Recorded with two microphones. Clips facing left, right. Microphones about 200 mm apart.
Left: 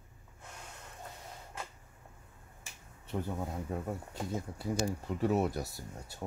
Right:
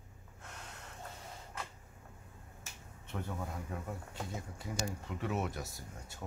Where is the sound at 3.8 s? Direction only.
40° left (ahead or behind).